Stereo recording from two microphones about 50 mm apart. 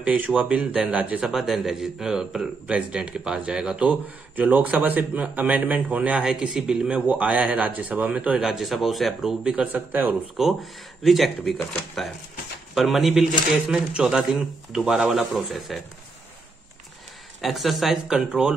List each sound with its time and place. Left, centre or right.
0.0 s a man's voice: right
1.3 s a man's voice: centre
4.4 s a man's voice: right
6.5 s a man's voice: centre
6.9 s a man's voice: right
8.4 s speech: centre
9.4 s a man's voice: right
9.7 s a man's voice: right
10.3 s speech: centre
13.9 s a man's voice: centre
14.9 s speech: centre
17.4 s speech: centre
18.0 s a man's voice: centre